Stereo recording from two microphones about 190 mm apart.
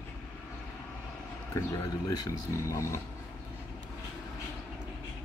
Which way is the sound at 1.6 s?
15° left (ahead or behind).